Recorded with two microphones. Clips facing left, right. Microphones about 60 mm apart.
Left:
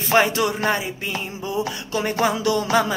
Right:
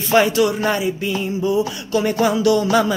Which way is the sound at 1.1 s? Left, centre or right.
Left.